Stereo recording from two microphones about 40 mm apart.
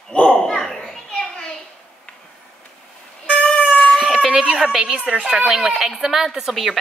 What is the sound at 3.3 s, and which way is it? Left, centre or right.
Cat, centre.